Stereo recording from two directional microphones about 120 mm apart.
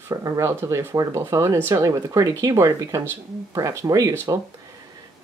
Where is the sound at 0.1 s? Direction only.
30° right (ahead or behind).